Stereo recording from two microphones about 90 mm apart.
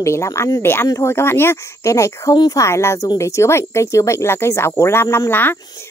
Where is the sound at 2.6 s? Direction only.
30° left (ahead or behind).